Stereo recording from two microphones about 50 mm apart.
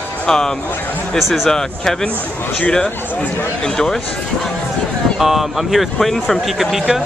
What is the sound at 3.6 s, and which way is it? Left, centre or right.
Speech, centre.